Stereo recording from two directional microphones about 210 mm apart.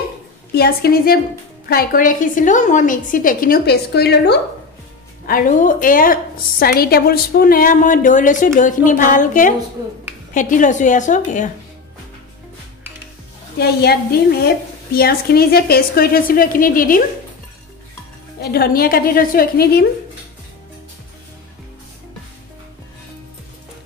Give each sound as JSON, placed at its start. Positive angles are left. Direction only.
{"t": 0.5, "sound": "a woman's voice", "side_deg": 45}
{"t": 5.2, "sound": "a woman's voice", "side_deg": 40}
{"t": 13.6, "sound": "a woman's voice", "side_deg": 50}
{"t": 18.4, "sound": "a woman's voice", "side_deg": 45}